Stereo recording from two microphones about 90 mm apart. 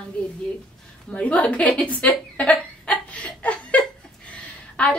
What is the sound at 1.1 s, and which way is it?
Chuckle, 15° left (ahead or behind).